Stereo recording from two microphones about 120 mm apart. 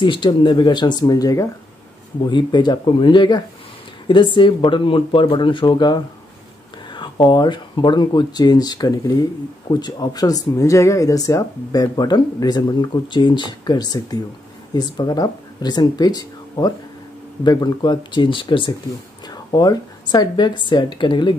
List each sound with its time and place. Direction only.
0.0 s speech: 40° left (ahead or behind)